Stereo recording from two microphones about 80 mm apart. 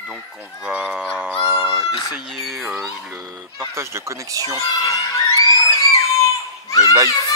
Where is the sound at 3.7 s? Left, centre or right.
Right.